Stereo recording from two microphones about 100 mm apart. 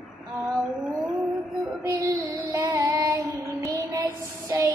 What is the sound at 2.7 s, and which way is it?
Child singing, 35° right (ahead or behind).